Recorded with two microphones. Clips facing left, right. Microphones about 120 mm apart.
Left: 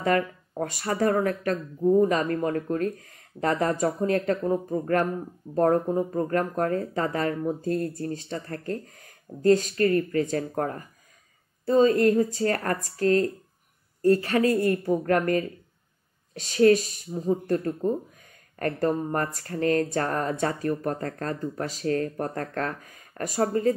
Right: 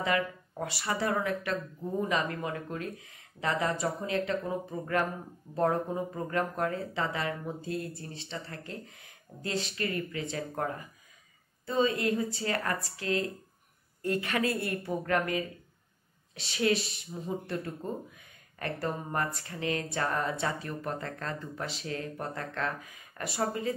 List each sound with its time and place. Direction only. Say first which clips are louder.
0.0 s a woman's voice: left 6 dB; 45° left (ahead or behind)